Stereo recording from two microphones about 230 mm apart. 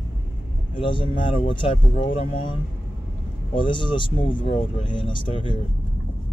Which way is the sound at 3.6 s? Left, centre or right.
Left.